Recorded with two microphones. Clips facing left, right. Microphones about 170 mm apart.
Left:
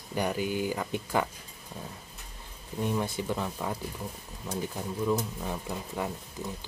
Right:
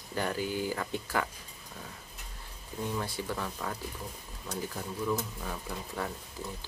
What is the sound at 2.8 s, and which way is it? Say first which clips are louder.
Speech: left 5 dB; 20° left (ahead or behind).